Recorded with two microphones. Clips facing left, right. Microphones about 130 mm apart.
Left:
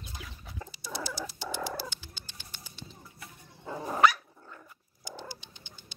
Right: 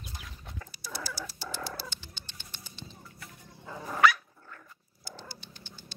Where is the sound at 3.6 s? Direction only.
20° left (ahead or behind).